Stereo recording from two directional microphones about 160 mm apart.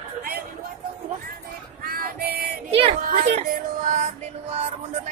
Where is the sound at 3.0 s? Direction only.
50° right (ahead or behind).